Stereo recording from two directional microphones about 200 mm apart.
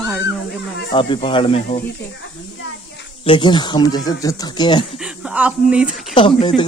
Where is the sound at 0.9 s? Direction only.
25° left (ahead or behind).